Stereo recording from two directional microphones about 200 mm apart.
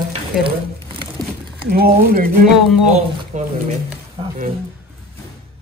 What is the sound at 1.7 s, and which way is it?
Speech, 50° right (ahead or behind).